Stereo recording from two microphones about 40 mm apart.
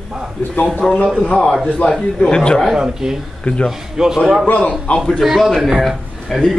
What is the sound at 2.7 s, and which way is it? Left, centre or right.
Speech, centre.